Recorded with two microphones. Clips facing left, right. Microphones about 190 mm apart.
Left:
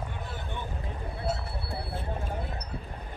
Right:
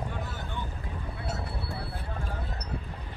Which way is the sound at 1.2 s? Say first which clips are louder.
Left 4 dB; 30° left (ahead or behind).